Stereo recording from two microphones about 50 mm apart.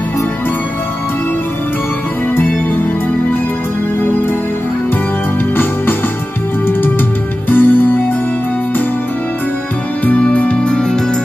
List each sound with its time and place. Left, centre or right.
7.4 s music: left
10.1 s music: left